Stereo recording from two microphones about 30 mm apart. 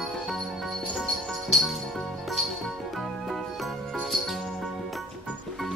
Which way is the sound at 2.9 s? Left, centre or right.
Centre.